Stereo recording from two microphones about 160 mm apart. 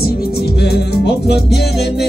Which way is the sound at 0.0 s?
75° left (ahead or behind).